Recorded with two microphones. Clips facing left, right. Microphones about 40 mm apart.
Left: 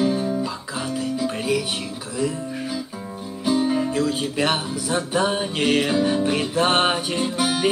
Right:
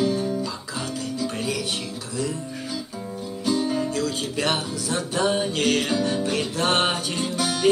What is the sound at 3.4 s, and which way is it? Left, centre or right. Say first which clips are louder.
Speech: left 3 dB; centre.